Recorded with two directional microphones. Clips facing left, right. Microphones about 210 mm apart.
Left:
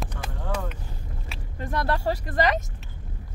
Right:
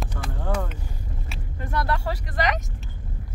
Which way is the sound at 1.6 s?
30° left (ahead or behind).